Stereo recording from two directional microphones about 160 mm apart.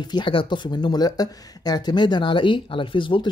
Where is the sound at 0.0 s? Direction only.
30° left (ahead or behind).